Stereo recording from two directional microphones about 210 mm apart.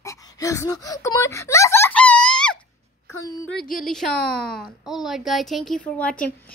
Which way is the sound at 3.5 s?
45° left (ahead or behind).